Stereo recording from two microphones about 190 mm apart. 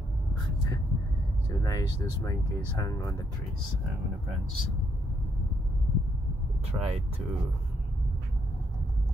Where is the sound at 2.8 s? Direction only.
20° left (ahead or behind).